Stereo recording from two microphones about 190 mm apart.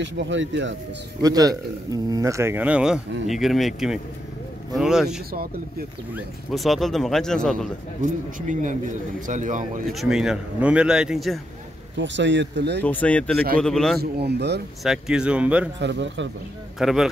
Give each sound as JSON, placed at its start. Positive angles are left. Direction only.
{"t": 0.0, "sound": "speech", "side_deg": -75}
{"t": 1.2, "sound": "speech", "side_deg": -20}
{"t": 5.3, "sound": "speech", "side_deg": -50}
{"t": 6.1, "sound": "speech", "side_deg": 0}
{"t": 8.0, "sound": "a man's voice", "side_deg": -40}
{"t": 9.8, "sound": "speech", "side_deg": 0}
{"t": 12.0, "sound": "speech", "side_deg": -70}
{"t": 12.8, "sound": "speech", "side_deg": 10}
{"t": 13.9, "sound": "speech", "side_deg": -60}
{"t": 14.8, "sound": "speech", "side_deg": 0}
{"t": 15.8, "sound": "speech", "side_deg": -70}
{"t": 16.7, "sound": "speech", "side_deg": 0}